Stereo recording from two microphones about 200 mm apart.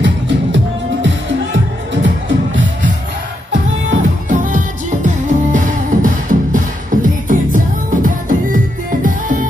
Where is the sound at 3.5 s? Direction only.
40° right (ahead or behind).